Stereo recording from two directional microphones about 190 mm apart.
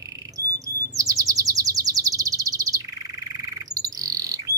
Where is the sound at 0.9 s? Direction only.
20° right (ahead or behind).